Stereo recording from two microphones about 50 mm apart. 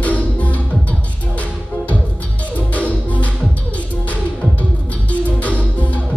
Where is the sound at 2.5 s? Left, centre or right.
Left.